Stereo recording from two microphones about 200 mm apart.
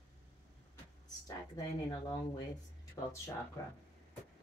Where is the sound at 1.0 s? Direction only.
20° left (ahead or behind).